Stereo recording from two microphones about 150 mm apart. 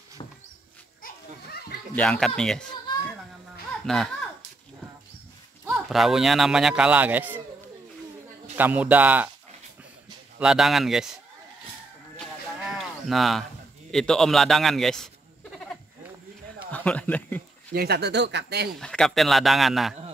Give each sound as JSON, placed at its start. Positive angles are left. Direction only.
{"t": 1.0, "sound": "children playing", "side_deg": 90}
{"t": 2.0, "sound": "speech", "side_deg": 5}
{"t": 3.8, "sound": "a child's voice", "side_deg": 0}
{"t": 5.7, "sound": "speech", "side_deg": 0}
{"t": 8.5, "sound": "a man's voice", "side_deg": -10}
{"t": 10.4, "sound": "speech", "side_deg": -5}
{"t": 12.6, "sound": "a sound", "side_deg": 0}
{"t": 13.9, "sound": "speech", "side_deg": 5}
{"t": 16.7, "sound": "speech", "side_deg": 10}
{"t": 17.7, "sound": "speech", "side_deg": -90}
{"t": 18.8, "sound": "speech", "side_deg": 5}